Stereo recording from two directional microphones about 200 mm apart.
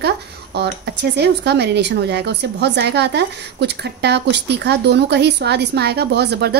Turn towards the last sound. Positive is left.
turn(degrees=-55)  # may be behind; listen again after turning